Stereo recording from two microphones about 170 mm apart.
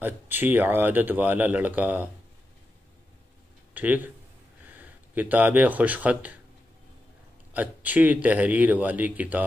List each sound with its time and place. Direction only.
0.0 s speech: 10° right (ahead or behind)
3.7 s speech: 10° right (ahead or behind)
7.5 s speech: 10° right (ahead or behind)